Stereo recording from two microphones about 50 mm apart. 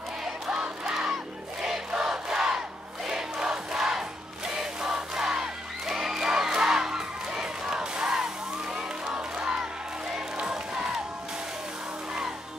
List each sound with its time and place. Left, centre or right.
0.2 s crowd: centre
4.5 s music: centre